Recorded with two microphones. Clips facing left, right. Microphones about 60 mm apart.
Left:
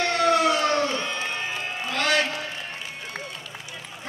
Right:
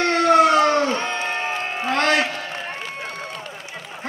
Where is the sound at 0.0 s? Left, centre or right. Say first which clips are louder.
Right 5 dB; right.